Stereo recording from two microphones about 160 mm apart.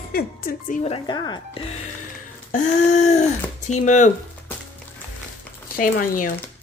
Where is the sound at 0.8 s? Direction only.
30° left (ahead or behind).